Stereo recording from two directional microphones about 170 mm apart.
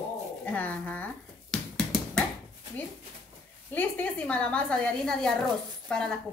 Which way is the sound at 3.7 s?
10° left (ahead or behind).